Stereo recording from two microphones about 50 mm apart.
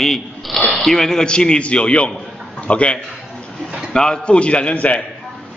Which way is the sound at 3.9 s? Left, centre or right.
Centre.